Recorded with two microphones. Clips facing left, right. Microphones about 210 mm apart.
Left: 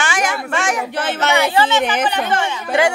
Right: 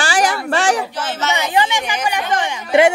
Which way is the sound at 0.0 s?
35° right (ahead or behind).